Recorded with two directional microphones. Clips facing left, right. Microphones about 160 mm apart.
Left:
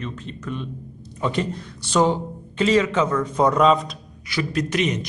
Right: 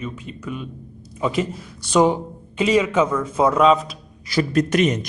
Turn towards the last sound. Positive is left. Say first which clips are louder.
# right 4 dB
turn(degrees=-50)  # may be behind; listen again after turning